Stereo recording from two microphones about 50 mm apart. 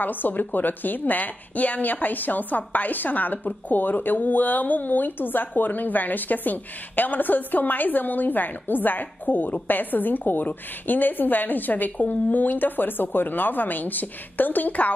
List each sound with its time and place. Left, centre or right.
0.0 s a woman's voice: left